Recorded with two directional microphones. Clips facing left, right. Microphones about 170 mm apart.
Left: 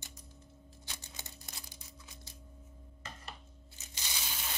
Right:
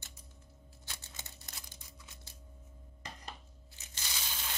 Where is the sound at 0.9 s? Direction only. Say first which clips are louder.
Left 1 dB; 15° left (ahead or behind).